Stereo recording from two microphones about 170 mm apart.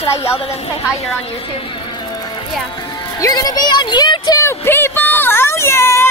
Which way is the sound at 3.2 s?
20° left (ahead or behind).